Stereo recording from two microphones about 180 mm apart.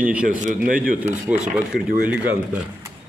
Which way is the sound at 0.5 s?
50° right (ahead or behind).